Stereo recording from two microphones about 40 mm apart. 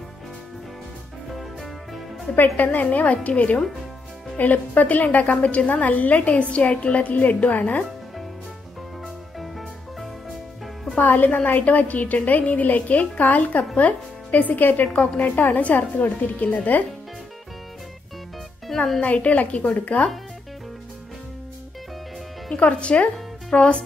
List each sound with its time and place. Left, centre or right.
2.3 s a woman's voice: left
11.0 s a woman's voice: left
18.9 s a woman's voice: left
22.6 s speech: left